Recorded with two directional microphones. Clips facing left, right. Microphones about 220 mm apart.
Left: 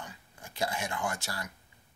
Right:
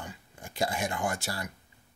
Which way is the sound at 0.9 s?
35° right (ahead or behind).